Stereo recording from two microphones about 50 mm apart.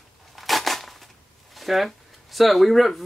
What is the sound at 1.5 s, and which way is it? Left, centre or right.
Speech, centre.